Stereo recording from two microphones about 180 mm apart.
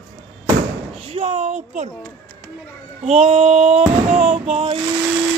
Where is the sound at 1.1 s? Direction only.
35° right (ahead or behind).